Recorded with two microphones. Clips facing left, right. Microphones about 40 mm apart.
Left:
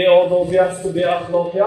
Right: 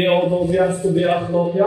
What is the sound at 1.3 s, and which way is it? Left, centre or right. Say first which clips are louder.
Speech: left 2 dB; left.